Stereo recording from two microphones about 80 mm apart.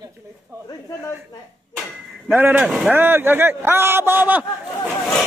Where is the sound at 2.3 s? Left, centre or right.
Right.